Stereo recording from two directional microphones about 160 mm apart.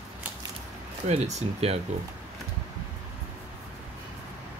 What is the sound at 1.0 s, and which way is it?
Speech, 45° right (ahead or behind).